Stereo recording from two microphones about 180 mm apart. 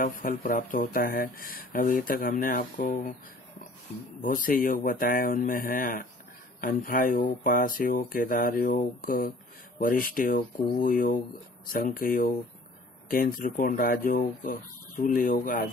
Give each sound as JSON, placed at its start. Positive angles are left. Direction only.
{"t": 0.0, "sound": "speech", "side_deg": 50}
{"t": 4.2, "sound": "speech", "side_deg": 50}